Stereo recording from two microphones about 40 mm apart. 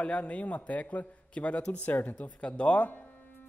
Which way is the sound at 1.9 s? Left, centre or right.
Left.